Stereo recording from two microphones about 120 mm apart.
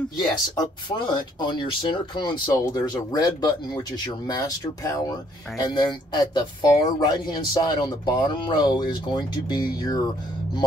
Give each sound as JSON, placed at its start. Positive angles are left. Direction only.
{"t": 0.2, "sound": "speech", "side_deg": 35}